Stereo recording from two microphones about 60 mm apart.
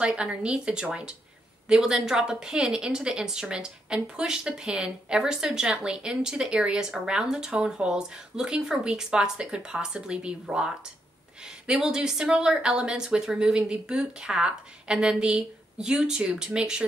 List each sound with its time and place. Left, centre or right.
0.0 s a woman's voice: centre
11.7 s a woman's voice: centre